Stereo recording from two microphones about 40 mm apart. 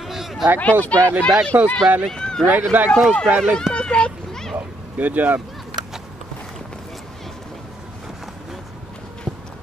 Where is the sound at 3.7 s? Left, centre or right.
Left.